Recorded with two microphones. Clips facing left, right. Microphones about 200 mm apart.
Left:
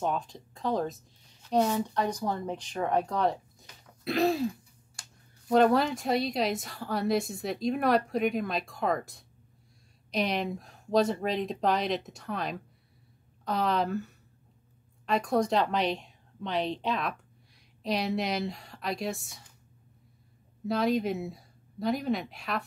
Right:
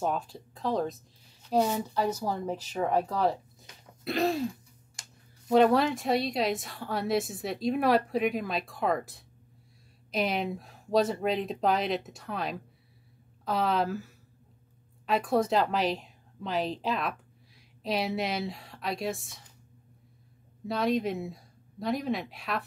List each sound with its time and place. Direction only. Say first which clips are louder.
0.0 s a woman's voice: even; 5° right (ahead or behind)
5.0 s a sound: even; 20° right (ahead or behind)
5.5 s a woman's voice: right 1 dB; centre (ahead or behind)
20.6 s a woman's voice: left 1 dB; centre (ahead or behind)